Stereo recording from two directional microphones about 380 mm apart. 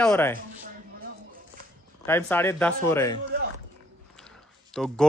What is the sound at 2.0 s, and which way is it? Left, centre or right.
Speech, centre.